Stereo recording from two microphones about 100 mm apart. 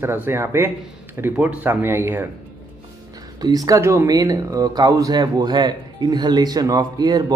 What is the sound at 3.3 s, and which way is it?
Speech, 40° right (ahead or behind).